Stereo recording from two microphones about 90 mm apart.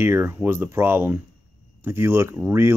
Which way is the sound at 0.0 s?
25° right (ahead or behind).